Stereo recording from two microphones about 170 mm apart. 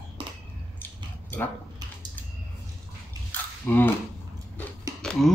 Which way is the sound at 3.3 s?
10° left (ahead or behind).